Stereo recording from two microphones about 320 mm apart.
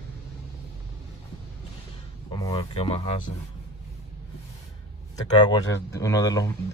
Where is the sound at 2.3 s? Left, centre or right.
Centre.